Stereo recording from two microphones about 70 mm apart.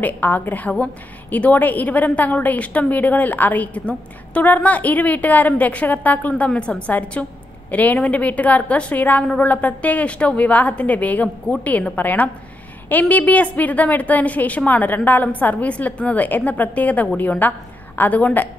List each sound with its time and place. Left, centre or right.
0.0 s a woman's voice: left